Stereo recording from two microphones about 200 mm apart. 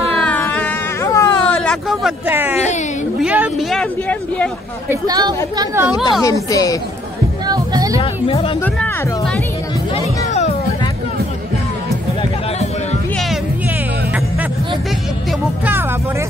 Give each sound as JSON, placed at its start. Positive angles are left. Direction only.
{"t": 0.2, "sound": "a sound", "side_deg": 5}
{"t": 1.6, "sound": "speech", "side_deg": 0}
{"t": 2.5, "sound": "speech", "side_deg": 35}
{"t": 3.2, "sound": "speech", "side_deg": -5}
{"t": 4.8, "sound": "a woman's voice", "side_deg": -20}
{"t": 6.2, "sound": "speech", "side_deg": 15}
{"t": 7.4, "sound": "music", "side_deg": -20}
{"t": 8.0, "sound": "speech", "side_deg": 30}
{"t": 8.6, "sound": "speech", "side_deg": 5}
{"t": 9.9, "sound": "music", "side_deg": 35}